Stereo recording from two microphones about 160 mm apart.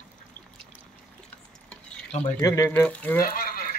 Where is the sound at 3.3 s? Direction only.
60° left (ahead or behind).